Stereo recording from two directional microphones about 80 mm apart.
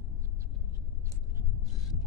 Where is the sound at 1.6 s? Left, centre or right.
Left.